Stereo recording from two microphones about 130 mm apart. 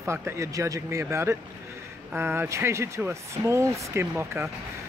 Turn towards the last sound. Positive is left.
turn(degrees=-20)  # may be behind; listen again after turning